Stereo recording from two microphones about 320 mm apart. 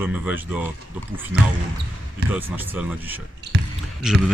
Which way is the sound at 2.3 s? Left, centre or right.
Centre.